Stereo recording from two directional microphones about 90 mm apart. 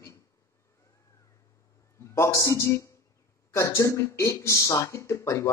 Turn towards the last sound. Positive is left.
turn(degrees=30)  # may be behind; listen again after turning